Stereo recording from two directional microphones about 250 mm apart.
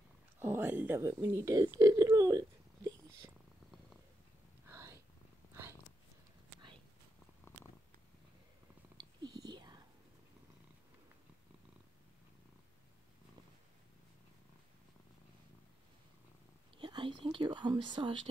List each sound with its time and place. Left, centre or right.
0.4 s speech: centre
4.6 s a sound: centre
8.9 s whispering: centre
16.7 s whispering: centre